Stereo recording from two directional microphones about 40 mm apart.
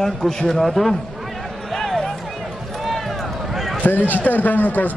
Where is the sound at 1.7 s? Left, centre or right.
Centre.